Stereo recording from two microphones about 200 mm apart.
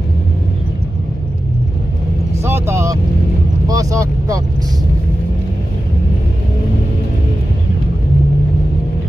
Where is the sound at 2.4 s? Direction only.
15° right (ahead or behind).